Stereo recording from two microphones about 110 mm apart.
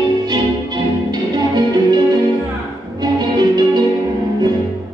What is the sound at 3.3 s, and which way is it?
Music, 40° right (ahead or behind).